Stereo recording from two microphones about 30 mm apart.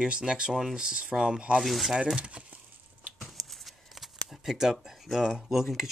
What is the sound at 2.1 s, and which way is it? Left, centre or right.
Speech, right.